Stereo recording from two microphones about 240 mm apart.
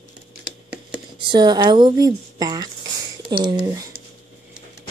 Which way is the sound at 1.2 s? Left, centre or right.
Centre.